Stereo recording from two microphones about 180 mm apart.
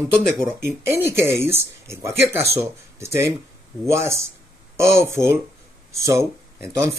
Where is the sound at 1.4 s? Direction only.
15° right (ahead or behind).